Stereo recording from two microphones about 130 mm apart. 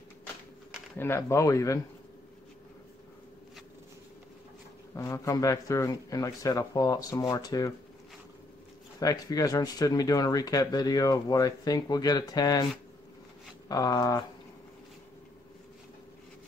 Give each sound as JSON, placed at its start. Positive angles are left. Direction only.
{"t": 0.9, "sound": "speech", "side_deg": 20}
{"t": 4.9, "sound": "speech", "side_deg": 25}
{"t": 9.0, "sound": "speech", "side_deg": 30}
{"t": 13.7, "sound": "speech", "side_deg": 30}